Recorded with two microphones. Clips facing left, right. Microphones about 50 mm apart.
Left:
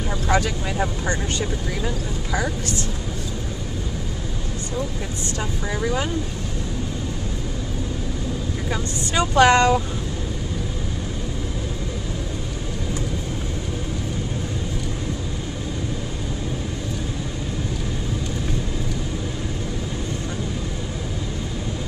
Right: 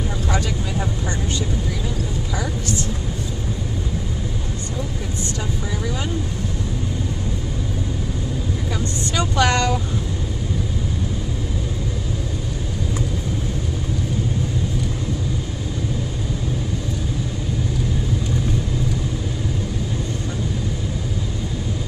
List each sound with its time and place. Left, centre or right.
0.3 s speech: left
9.1 s speech: left